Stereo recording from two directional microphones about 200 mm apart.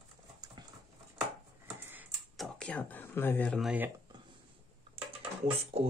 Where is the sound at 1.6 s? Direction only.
10° right (ahead or behind).